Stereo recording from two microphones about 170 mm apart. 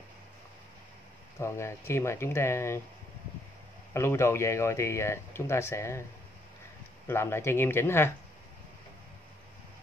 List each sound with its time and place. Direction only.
1.4 s speech: 15° left (ahead or behind)
3.9 s speech: 15° left (ahead or behind)
7.1 s speech: 15° left (ahead or behind)